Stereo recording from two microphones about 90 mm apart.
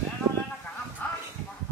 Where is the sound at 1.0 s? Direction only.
20° left (ahead or behind).